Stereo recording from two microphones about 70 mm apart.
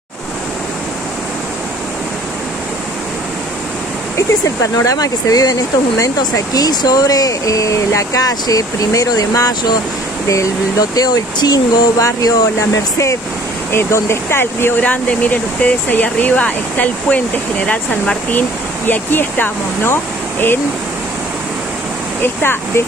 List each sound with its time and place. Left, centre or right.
4.7 s speech: left
10.2 s speech: left
13.7 s speech: left
14.8 s speech: left
22.2 s speech: left